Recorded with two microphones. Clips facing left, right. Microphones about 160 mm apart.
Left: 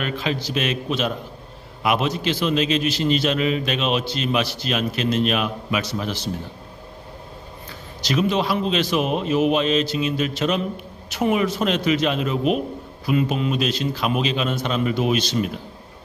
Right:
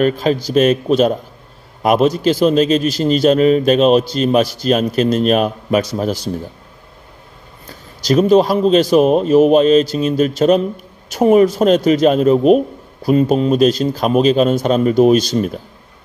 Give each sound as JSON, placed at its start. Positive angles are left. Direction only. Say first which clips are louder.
{"t": 0.0, "sound": "a man's voice", "louder": "right 10 dB", "side_deg": -40}
{"t": 7.6, "sound": "a man's voice", "louder": "right 9 dB", "side_deg": -40}